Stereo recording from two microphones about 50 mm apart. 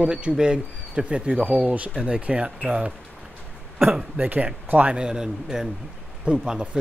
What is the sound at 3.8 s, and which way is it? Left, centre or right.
Speech, centre.